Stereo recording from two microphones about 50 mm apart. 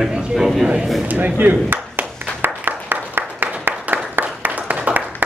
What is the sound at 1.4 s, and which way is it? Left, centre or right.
Clapping, right.